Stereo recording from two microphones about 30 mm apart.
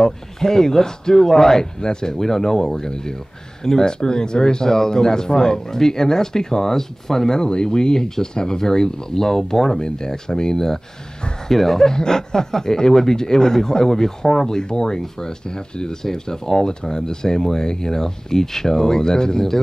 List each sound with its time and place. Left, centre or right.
0.0 s speech: centre
2.1 s speech: centre
7.3 s speech: left; by 9.8 s centre
9.8 s speech: left
11.5 s speech: centre
11.9 s speech: left